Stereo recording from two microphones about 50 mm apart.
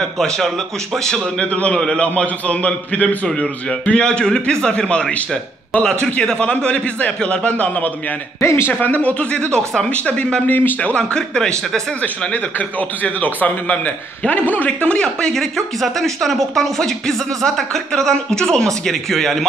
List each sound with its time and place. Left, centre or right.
0.9 s speech: centre
1.4 s a man's voice: left
8.4 s a man's voice: left
8.7 s a man's voice: left
10.4 s speech: left
11.0 s speech: centre
12.0 s a man's voice: left
15.3 s speech: centre